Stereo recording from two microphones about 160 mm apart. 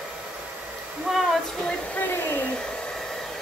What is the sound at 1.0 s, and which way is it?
Hair dryer, centre (ahead or behind).